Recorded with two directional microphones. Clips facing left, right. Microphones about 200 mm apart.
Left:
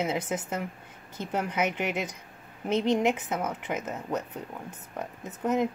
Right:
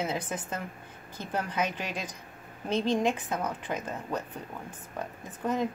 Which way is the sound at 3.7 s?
10° left (ahead or behind).